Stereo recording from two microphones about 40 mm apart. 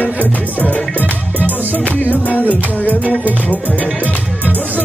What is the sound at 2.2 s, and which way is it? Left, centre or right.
Music, left.